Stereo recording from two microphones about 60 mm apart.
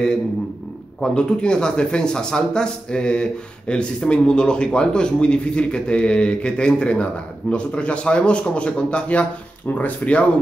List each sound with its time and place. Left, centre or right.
1.0 s speech: centre